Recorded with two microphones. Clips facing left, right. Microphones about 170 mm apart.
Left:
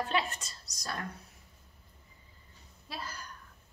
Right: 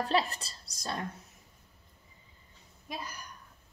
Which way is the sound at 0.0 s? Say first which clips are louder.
Right 3 dB; 35° right (ahead or behind).